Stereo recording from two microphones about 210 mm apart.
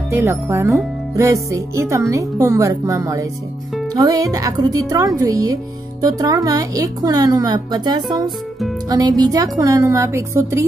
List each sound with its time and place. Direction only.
0.1 s speech: 10° right (ahead or behind)